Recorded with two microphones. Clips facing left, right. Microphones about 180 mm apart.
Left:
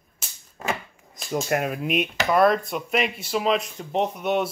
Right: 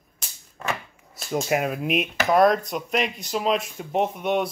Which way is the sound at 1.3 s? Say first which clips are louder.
Right 1 dB; centre (ahead or behind).